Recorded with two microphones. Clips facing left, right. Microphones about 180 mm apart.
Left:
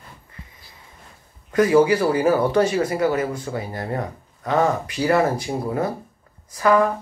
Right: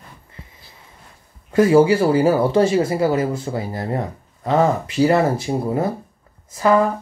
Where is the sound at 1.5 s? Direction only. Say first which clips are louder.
Right 3 dB; 25° right (ahead or behind).